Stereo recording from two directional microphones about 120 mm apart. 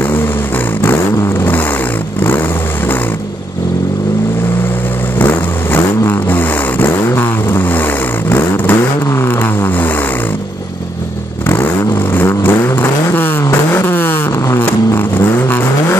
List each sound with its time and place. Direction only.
0.8 s a sound: 20° left (ahead or behind)
5.2 s vehicle: 15° left (ahead or behind)
11.4 s vehicle: 20° left (ahead or behind)